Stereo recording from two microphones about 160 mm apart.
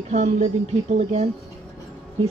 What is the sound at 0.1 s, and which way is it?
Speech, 45° right (ahead or behind).